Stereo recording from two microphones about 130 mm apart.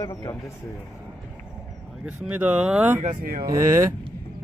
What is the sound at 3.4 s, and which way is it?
Speech, 25° right (ahead or behind).